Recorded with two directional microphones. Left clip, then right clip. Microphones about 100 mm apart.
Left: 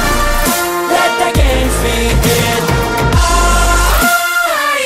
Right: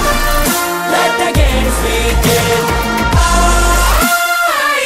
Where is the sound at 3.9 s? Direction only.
Centre (ahead or behind).